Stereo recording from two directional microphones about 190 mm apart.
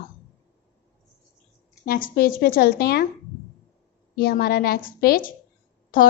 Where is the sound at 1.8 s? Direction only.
50° left (ahead or behind).